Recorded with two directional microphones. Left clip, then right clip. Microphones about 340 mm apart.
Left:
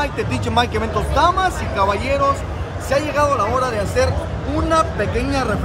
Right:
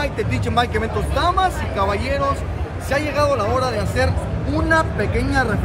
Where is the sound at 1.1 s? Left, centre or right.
Centre.